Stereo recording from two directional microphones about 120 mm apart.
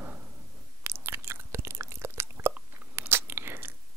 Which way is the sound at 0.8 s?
20° right (ahead or behind).